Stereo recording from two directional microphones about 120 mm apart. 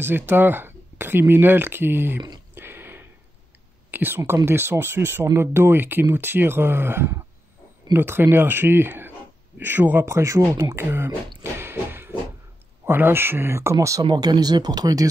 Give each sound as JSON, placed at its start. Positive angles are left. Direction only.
{"t": 0.0, "sound": "speech", "side_deg": -15}
{"t": 2.5, "sound": "a sound", "side_deg": -15}
{"t": 3.9, "sound": "speech", "side_deg": -15}
{"t": 11.5, "sound": "music", "side_deg": -20}
{"t": 12.8, "sound": "speech", "side_deg": -20}
{"t": 14.0, "sound": "speech", "side_deg": -35}